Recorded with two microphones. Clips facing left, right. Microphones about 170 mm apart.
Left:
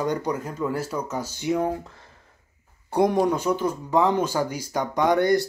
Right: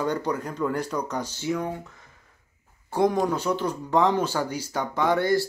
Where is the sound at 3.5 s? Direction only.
10° left (ahead or behind).